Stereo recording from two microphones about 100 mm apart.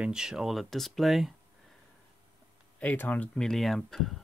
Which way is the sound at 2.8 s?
15° left (ahead or behind).